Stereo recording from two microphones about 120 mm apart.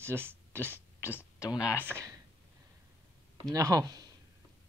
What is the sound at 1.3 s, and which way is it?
Speech, 30° left (ahead or behind).